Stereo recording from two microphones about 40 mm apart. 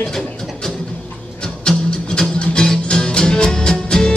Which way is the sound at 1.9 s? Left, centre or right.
Left.